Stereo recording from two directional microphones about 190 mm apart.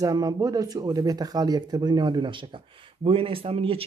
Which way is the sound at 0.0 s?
20° right (ahead or behind).